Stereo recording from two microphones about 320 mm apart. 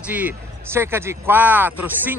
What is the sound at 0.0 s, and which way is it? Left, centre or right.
Speech, centre.